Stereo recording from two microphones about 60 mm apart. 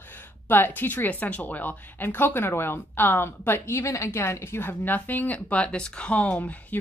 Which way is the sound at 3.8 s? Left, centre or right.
Left.